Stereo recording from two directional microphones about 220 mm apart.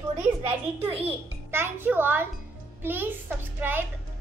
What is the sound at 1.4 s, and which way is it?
A child's voice, 10° right (ahead or behind).